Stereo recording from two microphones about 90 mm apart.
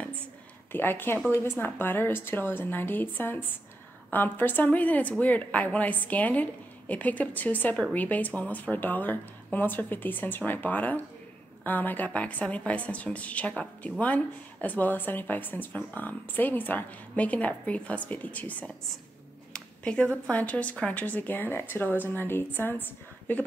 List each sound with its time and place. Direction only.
0.7 s a woman's voice: 25° left (ahead or behind)